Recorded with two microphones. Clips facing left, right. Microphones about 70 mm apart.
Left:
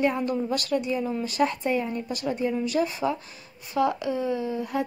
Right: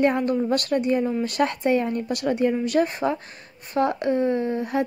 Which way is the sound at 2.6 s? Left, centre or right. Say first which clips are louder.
Right 3 dB; right.